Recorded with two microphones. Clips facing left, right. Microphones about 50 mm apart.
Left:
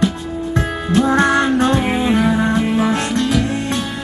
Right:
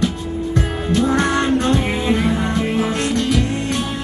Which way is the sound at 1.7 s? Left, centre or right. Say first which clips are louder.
Left 3 dB; centre.